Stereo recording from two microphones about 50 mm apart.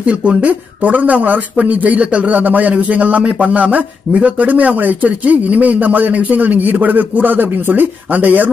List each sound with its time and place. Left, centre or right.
0.0 s speech: right